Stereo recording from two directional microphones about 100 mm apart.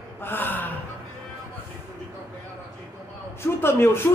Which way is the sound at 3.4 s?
25° left (ahead or behind).